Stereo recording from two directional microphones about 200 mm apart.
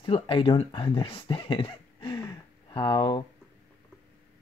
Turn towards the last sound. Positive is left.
turn(degrees=20)  # may be behind; listen again after turning